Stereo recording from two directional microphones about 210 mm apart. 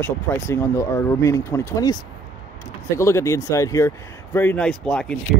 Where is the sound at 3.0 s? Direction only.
15° left (ahead or behind).